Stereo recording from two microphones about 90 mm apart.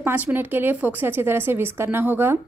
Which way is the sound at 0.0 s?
20° right (ahead or behind).